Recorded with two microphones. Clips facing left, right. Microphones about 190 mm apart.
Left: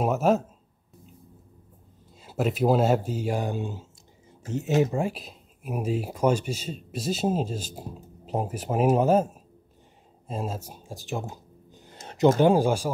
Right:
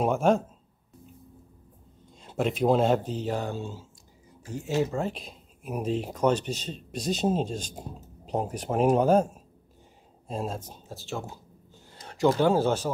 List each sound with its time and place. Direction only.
0.0 s speech: 5° left (ahead or behind)
2.2 s speech: 5° left (ahead or behind); by 4.8 s 20° left (ahead or behind)
4.9 s speech: 5° left (ahead or behind)